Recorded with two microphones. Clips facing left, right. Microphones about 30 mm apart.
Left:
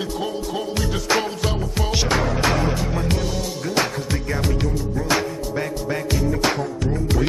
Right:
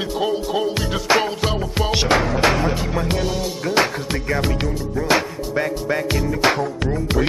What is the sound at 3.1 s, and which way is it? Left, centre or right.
Music, right.